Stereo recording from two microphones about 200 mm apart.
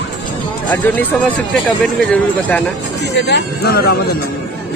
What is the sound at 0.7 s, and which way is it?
Speech, 10° left (ahead or behind).